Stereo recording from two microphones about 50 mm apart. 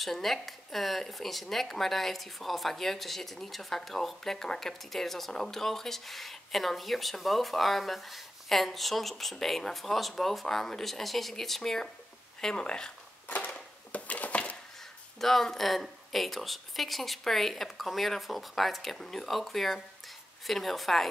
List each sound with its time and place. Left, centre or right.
0.0 s speech: centre
13.5 s dishes: left
15.1 s speech: centre